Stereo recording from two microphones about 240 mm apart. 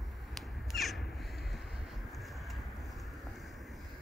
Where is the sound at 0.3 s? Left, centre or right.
Centre.